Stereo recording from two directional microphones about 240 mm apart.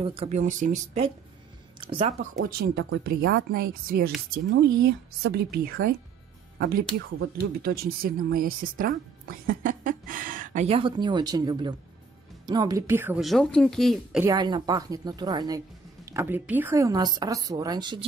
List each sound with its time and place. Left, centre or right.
0.0 s speech: right
2.3 s speech: right
7.2 s a woman's voice: right; by 14.2 s centre
14.2 s speech: centre